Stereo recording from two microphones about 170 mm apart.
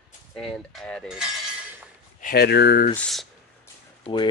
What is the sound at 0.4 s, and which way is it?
Cutlery, 5° left (ahead or behind).